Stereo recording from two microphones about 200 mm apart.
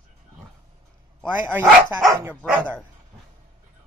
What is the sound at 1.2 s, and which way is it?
Speech, 10° right (ahead or behind).